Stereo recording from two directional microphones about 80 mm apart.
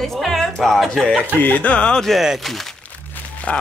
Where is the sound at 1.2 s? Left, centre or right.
Left; by 2.6 s centre.